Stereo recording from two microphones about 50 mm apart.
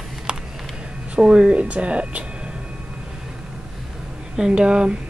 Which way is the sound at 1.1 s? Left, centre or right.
Centre.